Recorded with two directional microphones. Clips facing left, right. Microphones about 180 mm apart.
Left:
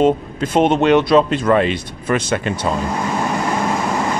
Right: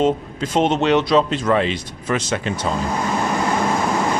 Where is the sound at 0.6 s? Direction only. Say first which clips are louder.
Left 3 dB; 55° left (ahead or behind).